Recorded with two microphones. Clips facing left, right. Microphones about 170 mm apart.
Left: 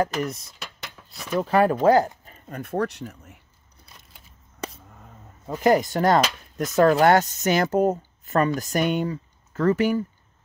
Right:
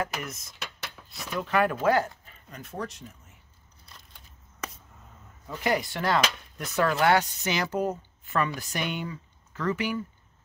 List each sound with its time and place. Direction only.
0.0 s speech: 35° left (ahead or behind)
1.0 s a sound: centre (ahead or behind)
1.3 s speech: 35° left (ahead or behind); by 3.3 s 70° left (ahead or behind)
5.5 s speech: 40° left (ahead or behind)